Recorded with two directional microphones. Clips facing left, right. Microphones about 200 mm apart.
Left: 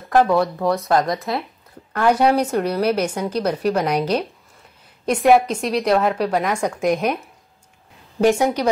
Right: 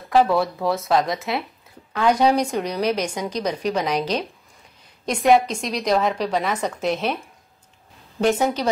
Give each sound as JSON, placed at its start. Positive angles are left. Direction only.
{"t": 0.0, "sound": "a woman's voice", "side_deg": 0}